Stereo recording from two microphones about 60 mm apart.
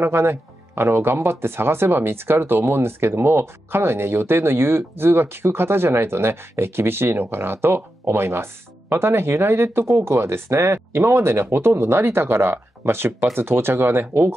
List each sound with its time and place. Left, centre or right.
0.0 s speech: right